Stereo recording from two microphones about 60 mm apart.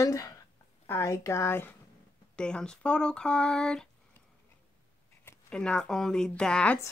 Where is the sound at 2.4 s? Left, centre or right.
Centre.